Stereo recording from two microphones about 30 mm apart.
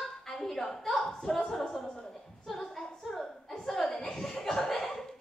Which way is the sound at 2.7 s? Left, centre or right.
Centre.